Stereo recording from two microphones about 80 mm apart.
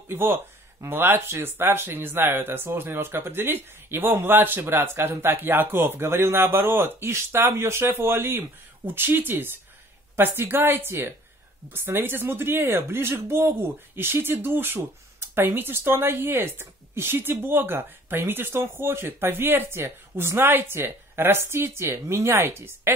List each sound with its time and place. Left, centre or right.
0.1 s speech: right